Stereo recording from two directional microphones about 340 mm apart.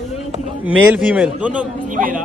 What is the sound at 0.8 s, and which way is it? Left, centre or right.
Speech, centre.